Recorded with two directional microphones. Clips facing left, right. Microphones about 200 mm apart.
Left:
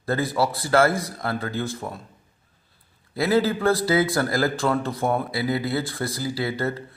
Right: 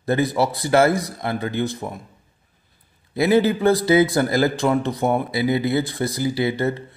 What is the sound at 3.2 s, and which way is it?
A man's voice, 20° right (ahead or behind).